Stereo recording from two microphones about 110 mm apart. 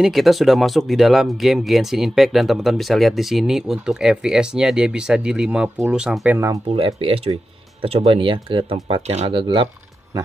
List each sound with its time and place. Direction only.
0.0 s speech: centre (ahead or behind)
6.3 s speech: 25° right (ahead or behind)
7.0 s speech: 60° right (ahead or behind)